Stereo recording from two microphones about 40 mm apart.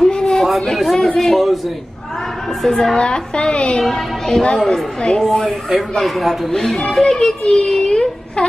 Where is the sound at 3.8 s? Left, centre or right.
Centre.